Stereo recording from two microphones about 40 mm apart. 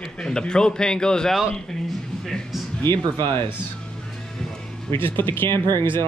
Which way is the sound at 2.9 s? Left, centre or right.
Left.